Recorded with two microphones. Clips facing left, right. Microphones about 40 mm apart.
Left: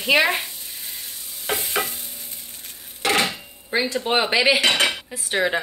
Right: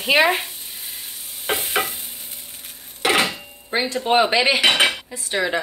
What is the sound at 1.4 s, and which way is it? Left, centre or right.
Stir, right.